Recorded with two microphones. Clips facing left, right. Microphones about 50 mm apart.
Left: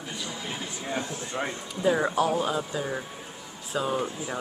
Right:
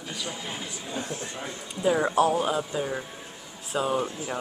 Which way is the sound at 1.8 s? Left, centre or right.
Centre.